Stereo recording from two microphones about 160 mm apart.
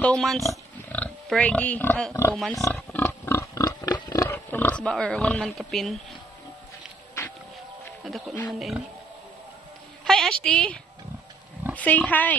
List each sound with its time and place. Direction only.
0.0 s speech: 5° left (ahead or behind)
2.3 s speech: centre (ahead or behind)
2.7 s pig: 10° left (ahead or behind)
8.0 s music: centre (ahead or behind)
8.5 s speech: centre (ahead or behind)
10.0 s a sound: 5° left (ahead or behind)
11.7 s speech: 10° left (ahead or behind)